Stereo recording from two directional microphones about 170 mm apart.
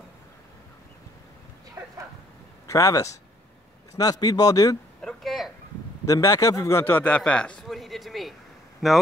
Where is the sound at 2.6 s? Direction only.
20° left (ahead or behind).